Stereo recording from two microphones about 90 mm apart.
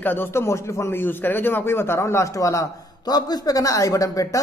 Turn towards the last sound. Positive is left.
turn(degrees=40)  # may be behind; listen again after turning